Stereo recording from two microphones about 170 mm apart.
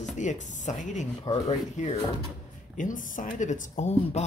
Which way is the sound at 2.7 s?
50° left (ahead or behind).